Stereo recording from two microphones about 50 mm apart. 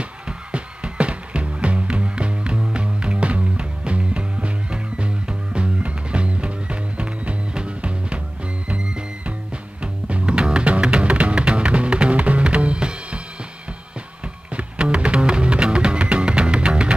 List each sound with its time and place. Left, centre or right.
0.5 s music: right
14.5 s music: right